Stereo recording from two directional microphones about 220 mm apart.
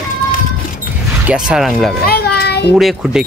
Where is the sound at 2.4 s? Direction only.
50° left (ahead or behind).